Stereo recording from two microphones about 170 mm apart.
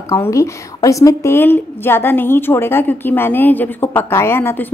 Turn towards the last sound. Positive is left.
turn(degrees=15)  # may be behind; listen again after turning